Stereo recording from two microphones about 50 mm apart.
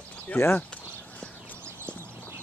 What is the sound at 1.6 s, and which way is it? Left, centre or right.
Horse, right.